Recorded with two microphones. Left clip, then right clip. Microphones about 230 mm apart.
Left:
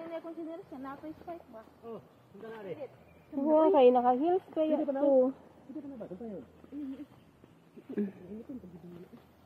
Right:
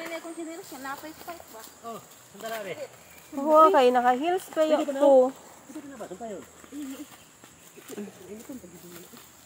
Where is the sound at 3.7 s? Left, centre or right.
Right.